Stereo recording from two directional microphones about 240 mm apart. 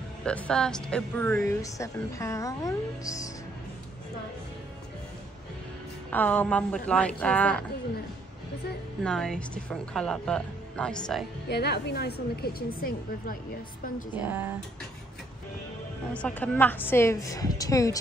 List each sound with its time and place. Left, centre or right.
0.2 s speech: centre
6.0 s a woman's voice: centre
9.0 s a woman's voice: centre
11.4 s a woman's voice: left
14.1 s speech: centre
16.1 s speech: centre